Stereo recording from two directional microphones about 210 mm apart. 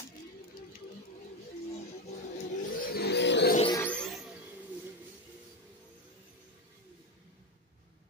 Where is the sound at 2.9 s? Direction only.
55° left (ahead or behind).